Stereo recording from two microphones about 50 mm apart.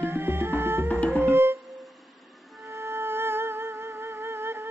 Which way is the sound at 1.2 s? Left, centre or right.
Right.